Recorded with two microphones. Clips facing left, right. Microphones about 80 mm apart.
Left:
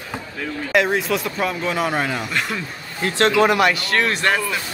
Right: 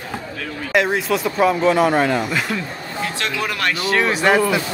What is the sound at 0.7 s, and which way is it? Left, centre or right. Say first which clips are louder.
Speech: right 1 dB; centre.